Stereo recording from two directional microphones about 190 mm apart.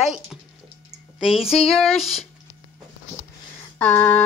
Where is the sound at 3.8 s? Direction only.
10° left (ahead or behind).